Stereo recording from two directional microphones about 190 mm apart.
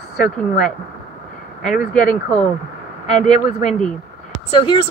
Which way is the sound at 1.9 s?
45° left (ahead or behind).